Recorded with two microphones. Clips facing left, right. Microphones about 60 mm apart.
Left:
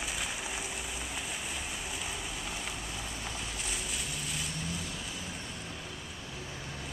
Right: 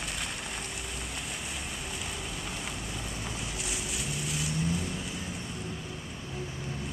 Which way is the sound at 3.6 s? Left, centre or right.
Centre.